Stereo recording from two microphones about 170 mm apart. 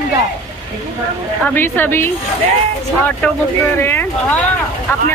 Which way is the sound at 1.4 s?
10° left (ahead or behind).